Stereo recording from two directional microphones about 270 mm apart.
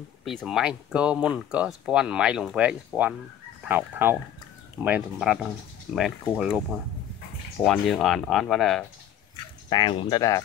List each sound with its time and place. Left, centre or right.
0.2 s speech: centre
9.7 s speech: centre